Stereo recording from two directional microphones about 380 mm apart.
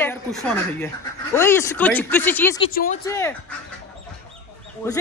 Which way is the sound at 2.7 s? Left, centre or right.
Left.